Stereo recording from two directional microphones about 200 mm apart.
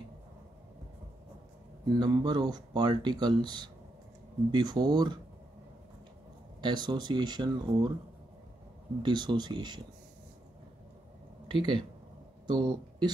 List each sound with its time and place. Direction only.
2.0 s speech: 20° right (ahead or behind)
6.6 s speech: 20° right (ahead or behind)
9.0 s speech: 20° right (ahead or behind)
11.4 s speech: 25° right (ahead or behind)